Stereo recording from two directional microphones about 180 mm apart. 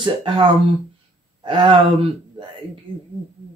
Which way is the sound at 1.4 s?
30° right (ahead or behind).